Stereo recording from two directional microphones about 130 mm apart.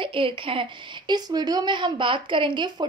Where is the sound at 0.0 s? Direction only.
45° right (ahead or behind).